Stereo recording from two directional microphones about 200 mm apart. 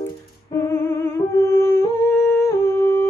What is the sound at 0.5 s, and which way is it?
Humming, 10° left (ahead or behind).